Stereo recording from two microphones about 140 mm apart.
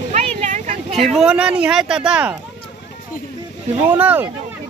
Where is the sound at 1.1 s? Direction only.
5° right (ahead or behind).